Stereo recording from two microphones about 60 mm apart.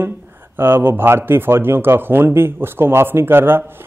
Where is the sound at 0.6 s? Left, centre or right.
Right.